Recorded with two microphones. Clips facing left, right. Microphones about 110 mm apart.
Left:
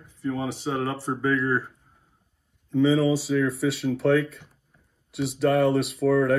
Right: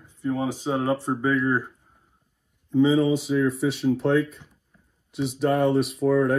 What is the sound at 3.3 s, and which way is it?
Speech, 20° right (ahead or behind).